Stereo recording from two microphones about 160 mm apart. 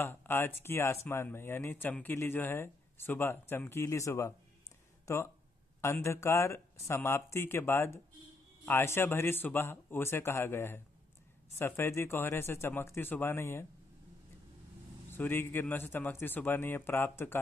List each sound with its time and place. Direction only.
0.0 s speech: 15° left (ahead or behind)
15.0 s speech: 15° left (ahead or behind)